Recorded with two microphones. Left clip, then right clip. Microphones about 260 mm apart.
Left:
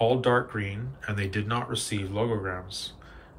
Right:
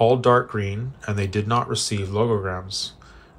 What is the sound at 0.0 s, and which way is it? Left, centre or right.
Speech, centre.